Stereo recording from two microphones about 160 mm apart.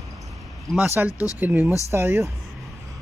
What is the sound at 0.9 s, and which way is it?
Speech, 10° right (ahead or behind).